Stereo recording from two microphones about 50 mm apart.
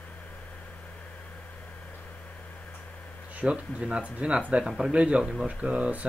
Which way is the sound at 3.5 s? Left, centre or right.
Right.